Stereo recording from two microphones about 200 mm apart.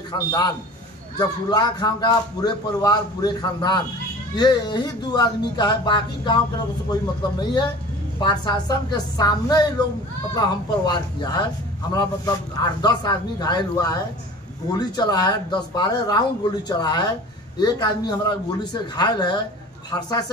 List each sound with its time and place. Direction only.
0.1 s a man's voice: 20° left (ahead or behind)